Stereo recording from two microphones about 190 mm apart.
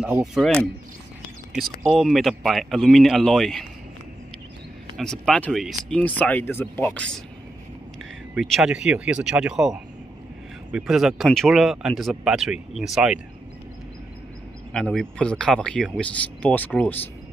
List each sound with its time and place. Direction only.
0.0 s speech: 15° right (ahead or behind)
1.5 s speech: 40° right (ahead or behind)
1.9 s speech: centre (ahead or behind)
4.9 s speech: centre (ahead or behind)
8.4 s speech: centre (ahead or behind)
14.7 s speech: 5° left (ahead or behind)